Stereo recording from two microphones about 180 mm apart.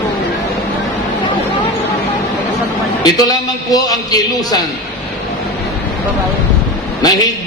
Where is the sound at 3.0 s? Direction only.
20° left (ahead or behind).